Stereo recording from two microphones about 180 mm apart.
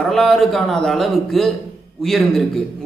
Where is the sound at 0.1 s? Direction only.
Centre (ahead or behind).